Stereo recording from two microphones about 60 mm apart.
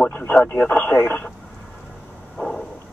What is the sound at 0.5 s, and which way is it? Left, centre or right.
Speech, left.